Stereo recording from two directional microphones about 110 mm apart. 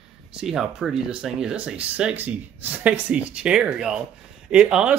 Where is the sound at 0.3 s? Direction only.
5° right (ahead or behind).